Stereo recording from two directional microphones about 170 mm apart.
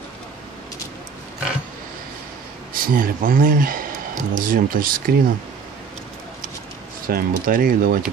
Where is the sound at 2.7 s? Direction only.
55° right (ahead or behind).